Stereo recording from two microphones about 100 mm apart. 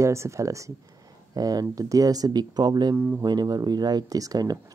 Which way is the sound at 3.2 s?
45° right (ahead or behind).